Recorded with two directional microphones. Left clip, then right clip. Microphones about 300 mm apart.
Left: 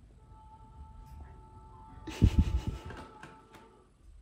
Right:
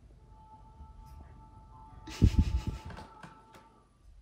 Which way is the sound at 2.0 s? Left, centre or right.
Right.